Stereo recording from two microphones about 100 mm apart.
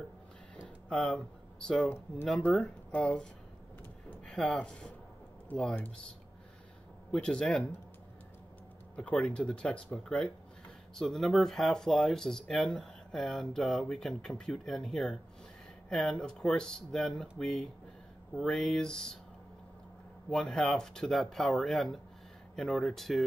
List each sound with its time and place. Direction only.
0.8 s speech: 5° left (ahead or behind)
1.9 s speech: 25° left (ahead or behind)
2.6 s speech: 10° left (ahead or behind)
7.1 s speech: 10° left (ahead or behind)
8.9 s speech: 10° left (ahead or behind)
20.2 s speech: 5° left (ahead or behind)